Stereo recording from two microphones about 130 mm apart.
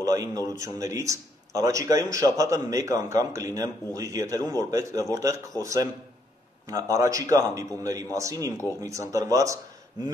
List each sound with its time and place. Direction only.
0.0 s a man's voice: 25° right (ahead or behind)